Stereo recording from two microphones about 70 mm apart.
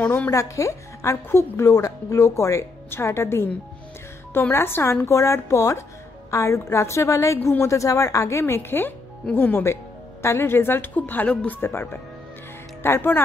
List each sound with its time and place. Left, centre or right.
0.0 s speech: left
0.3 s a woman's voice: left
11.6 s speech: left